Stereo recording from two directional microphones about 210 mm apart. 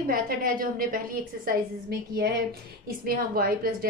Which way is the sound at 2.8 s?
45° right (ahead or behind).